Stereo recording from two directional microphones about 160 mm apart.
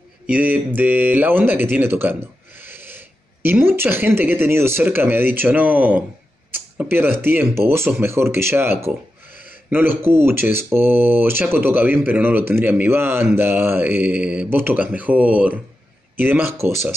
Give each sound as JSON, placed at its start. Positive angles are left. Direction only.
{"t": 0.3, "sound": "speech", "side_deg": -10}
{"t": 9.3, "sound": "a sound", "side_deg": 55}
{"t": 9.7, "sound": "speech", "side_deg": -10}